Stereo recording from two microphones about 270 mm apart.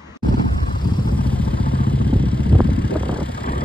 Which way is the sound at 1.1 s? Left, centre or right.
Centre.